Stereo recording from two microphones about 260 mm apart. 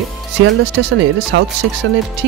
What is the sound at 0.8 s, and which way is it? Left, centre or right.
Speech, right.